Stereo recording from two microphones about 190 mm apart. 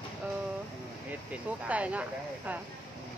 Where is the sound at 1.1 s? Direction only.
5° right (ahead or behind).